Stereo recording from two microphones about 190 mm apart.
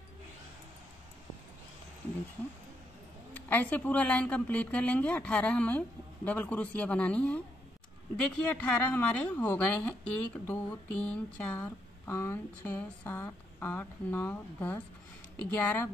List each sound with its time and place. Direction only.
3.4 s a woman's voice: 10° left (ahead or behind)